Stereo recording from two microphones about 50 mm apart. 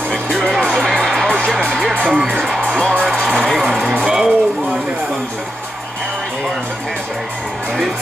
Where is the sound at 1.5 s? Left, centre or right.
Centre.